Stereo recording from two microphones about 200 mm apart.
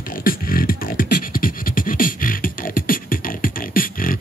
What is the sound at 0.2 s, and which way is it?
Beatboxing, 45° left (ahead or behind).